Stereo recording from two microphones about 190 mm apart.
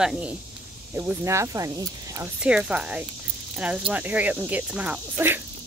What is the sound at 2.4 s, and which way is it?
Speech, 5° right (ahead or behind).